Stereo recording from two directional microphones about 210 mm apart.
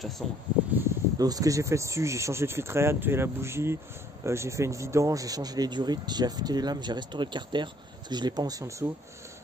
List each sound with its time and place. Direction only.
0.2 s speech: centre (ahead or behind)
0.7 s speech: 15° right (ahead or behind)